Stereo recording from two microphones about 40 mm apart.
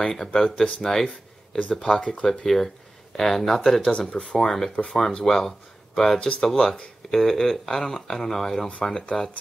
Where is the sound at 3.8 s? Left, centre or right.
Left.